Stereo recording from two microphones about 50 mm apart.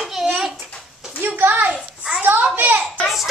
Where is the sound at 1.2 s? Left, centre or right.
Right.